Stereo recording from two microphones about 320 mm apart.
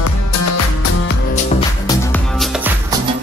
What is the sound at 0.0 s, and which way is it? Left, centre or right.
Music, left.